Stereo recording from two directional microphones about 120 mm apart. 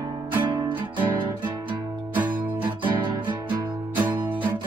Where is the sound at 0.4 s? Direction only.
40° right (ahead or behind).